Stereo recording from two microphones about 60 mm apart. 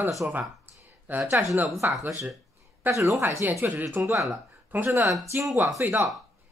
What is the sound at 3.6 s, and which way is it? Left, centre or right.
Speech, right.